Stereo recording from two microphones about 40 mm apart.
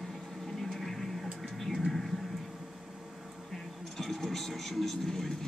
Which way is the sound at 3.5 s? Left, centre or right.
Centre.